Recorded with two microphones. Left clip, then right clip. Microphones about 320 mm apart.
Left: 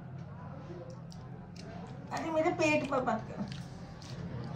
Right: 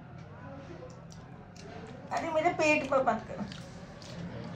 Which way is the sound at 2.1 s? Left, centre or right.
Centre.